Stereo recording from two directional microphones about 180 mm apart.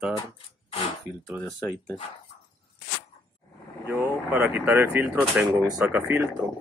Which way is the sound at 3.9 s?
15° right (ahead or behind).